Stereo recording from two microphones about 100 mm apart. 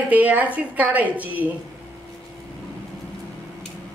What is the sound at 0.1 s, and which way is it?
A woman's voice, 15° right (ahead or behind).